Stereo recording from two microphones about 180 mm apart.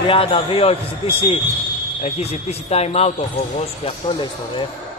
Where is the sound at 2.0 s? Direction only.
35° left (ahead or behind).